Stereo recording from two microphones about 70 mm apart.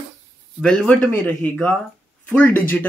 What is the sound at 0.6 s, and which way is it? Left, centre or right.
Speech, centre.